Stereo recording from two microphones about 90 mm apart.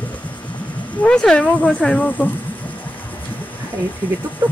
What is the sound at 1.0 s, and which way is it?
Speech, 10° left (ahead or behind).